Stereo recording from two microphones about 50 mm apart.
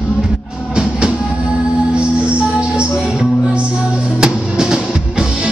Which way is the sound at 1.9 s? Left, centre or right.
Right.